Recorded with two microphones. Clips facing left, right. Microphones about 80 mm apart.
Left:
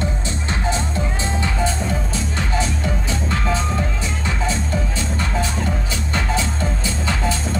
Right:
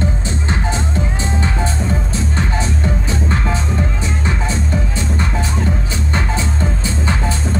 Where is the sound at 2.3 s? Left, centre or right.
Right.